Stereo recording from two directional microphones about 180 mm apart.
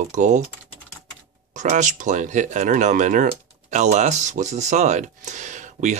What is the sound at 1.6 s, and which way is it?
Speech, 45° right (ahead or behind).